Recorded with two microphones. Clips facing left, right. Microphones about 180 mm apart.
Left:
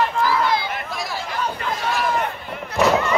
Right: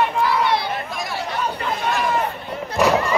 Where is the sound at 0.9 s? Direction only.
Centre (ahead or behind).